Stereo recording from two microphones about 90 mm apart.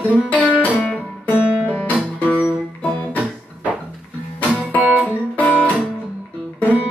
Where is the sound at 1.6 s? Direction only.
20° left (ahead or behind).